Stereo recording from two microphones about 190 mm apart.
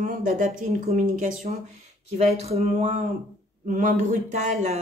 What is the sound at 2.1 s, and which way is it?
Speech, 35° right (ahead or behind).